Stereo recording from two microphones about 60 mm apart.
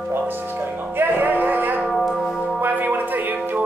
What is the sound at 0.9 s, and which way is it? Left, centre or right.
Music, right.